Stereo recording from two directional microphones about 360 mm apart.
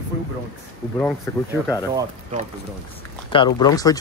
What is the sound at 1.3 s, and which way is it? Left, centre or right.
Speech, centre.